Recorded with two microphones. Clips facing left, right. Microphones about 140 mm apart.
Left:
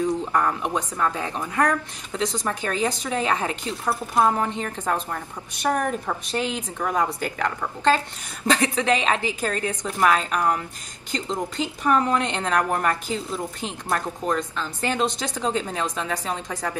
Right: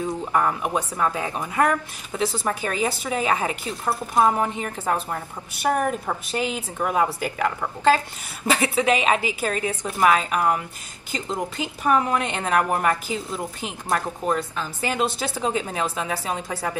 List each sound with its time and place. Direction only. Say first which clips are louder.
0.2 s a woman's voice: right 1 dB; 10° right (ahead or behind)